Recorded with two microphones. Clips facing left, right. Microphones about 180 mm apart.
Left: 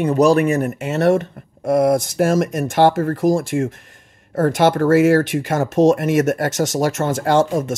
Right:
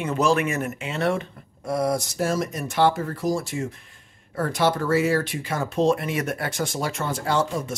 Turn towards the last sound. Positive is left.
turn(degrees=45)  # may be behind; listen again after turning